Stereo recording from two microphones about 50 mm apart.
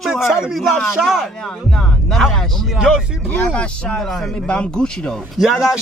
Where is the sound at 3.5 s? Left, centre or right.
Left.